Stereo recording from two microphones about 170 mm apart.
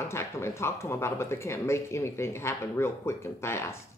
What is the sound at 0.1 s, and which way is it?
Speech, 15° left (ahead or behind).